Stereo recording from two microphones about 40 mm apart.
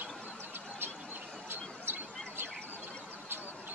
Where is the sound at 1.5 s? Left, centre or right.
Right.